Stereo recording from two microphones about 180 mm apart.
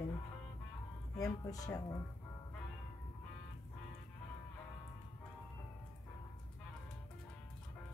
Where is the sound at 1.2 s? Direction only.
20° left (ahead or behind).